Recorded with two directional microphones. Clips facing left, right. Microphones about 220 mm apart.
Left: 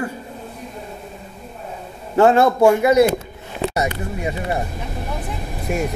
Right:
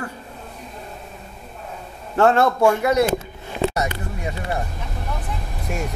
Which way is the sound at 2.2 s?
10° left (ahead or behind).